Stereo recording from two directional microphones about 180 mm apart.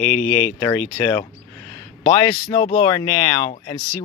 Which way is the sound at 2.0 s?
30° left (ahead or behind).